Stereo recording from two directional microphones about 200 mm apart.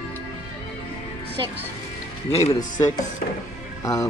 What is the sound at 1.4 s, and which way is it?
Speech, 20° right (ahead or behind).